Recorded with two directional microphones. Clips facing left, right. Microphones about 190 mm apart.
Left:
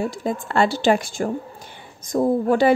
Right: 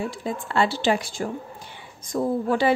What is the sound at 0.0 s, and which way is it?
Speech, 45° left (ahead or behind).